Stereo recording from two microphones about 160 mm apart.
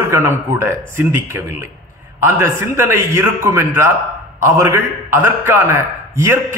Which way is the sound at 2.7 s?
15° right (ahead or behind).